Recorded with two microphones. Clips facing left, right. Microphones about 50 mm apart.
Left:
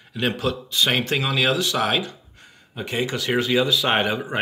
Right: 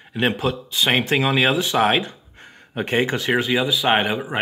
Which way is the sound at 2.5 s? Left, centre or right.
Right.